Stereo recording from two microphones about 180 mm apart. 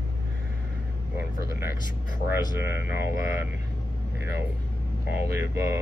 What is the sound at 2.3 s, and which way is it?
Speech, 15° right (ahead or behind).